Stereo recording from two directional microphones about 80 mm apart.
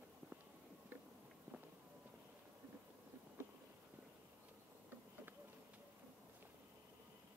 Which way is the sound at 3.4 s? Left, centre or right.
Right.